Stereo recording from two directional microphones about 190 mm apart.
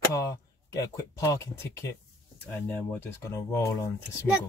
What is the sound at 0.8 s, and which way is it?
Speech, 20° left (ahead or behind).